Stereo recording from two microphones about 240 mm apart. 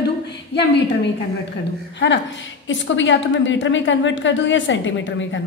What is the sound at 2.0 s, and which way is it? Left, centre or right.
A woman's voice, left.